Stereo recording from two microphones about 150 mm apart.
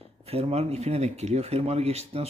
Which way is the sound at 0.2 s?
45° right (ahead or behind).